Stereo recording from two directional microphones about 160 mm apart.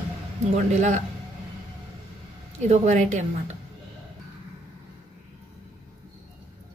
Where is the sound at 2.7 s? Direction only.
50° right (ahead or behind).